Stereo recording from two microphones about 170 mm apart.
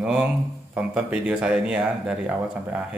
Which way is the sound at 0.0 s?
5° right (ahead or behind).